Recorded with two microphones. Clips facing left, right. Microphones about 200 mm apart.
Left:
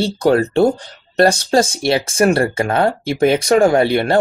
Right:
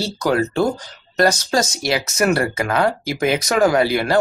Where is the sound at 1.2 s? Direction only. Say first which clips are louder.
Left 4 dB; 30° left (ahead or behind).